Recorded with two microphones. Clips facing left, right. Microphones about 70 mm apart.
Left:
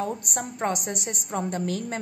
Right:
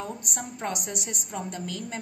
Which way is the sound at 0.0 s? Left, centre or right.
Left.